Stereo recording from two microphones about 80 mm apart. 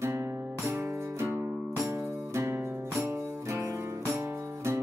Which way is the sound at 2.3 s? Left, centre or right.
Right.